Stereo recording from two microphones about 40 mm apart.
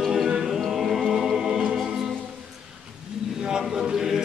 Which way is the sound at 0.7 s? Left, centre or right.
Centre.